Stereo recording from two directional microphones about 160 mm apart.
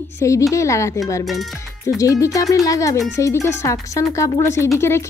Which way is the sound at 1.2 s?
Centre (ahead or behind).